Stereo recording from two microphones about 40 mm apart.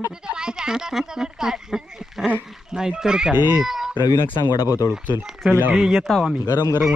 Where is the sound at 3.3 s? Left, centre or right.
Right.